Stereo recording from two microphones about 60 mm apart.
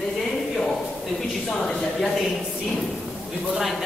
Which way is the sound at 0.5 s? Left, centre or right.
Centre.